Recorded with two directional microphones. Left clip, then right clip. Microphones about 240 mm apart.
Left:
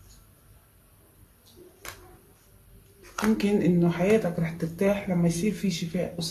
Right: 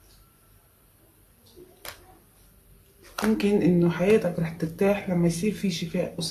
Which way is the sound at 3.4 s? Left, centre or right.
Centre.